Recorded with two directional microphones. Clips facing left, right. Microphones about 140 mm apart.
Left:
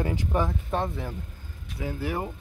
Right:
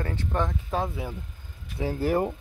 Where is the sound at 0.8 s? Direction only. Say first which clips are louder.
Even; 5° right (ahead or behind).